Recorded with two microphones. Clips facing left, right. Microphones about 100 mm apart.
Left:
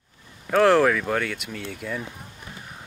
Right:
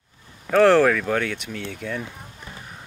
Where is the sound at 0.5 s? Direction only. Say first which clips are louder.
Right 2 dB; 5° left (ahead or behind).